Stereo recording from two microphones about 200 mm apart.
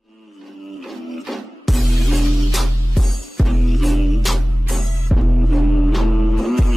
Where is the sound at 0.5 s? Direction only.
Centre (ahead or behind).